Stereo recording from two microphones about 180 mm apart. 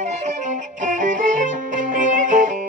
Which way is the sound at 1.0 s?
45° right (ahead or behind).